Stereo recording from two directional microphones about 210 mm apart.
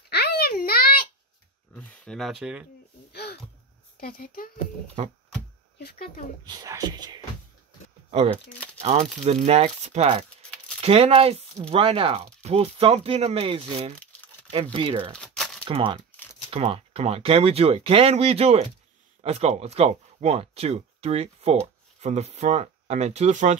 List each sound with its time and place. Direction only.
0.1 s a sound: 50° left (ahead or behind)
1.8 s speech: centre (ahead or behind)
3.1 s a sound: 50° left (ahead or behind)
4.0 s speech: 45° left (ahead or behind)
5.0 s speech: 30° right (ahead or behind)
5.8 s speech: 45° left (ahead or behind)
6.4 s speech: 15° right (ahead or behind)
8.1 s speech: 30° right (ahead or behind)
15.1 s a sound: 5° left (ahead or behind)
15.6 s speech: 25° right (ahead or behind)